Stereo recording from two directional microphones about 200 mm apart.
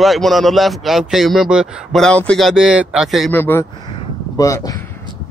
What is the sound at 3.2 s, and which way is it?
Speech, 10° left (ahead or behind).